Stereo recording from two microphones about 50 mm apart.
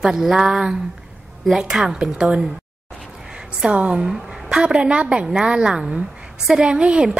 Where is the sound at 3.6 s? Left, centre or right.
Right.